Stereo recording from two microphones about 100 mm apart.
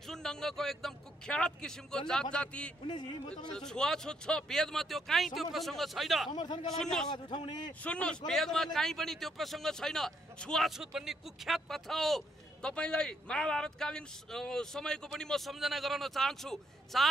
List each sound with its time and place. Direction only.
0.0 s a man's voice: 5° left (ahead or behind)
6.3 s a man's voice: 45° left (ahead or behind)
6.8 s a man's voice: 5° left (ahead or behind)
7.1 s a man's voice: 50° left (ahead or behind)
7.8 s a man's voice: 10° left (ahead or behind)